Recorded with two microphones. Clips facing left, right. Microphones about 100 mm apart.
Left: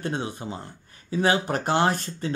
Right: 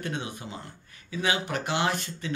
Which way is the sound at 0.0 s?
35° left (ahead or behind).